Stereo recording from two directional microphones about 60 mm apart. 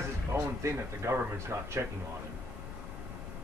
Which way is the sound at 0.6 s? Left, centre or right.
Right.